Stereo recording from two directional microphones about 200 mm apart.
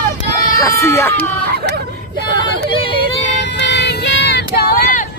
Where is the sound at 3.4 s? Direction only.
60° left (ahead or behind).